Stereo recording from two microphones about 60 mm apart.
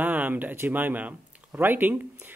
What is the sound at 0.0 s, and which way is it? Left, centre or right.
Speech, right.